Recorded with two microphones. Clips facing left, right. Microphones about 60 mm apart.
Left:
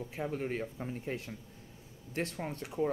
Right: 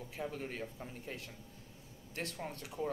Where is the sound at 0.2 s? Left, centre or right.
Left.